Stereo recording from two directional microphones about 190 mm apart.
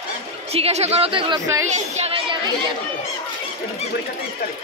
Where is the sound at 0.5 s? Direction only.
35° right (ahead or behind); by 1.6 s 15° right (ahead or behind).